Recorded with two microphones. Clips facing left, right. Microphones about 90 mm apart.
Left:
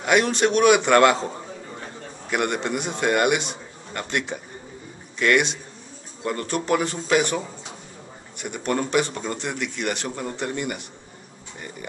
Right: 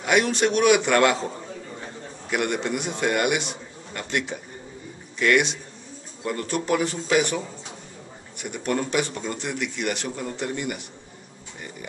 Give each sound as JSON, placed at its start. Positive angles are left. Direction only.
{"t": 0.0, "sound": "a man's voice", "side_deg": 0}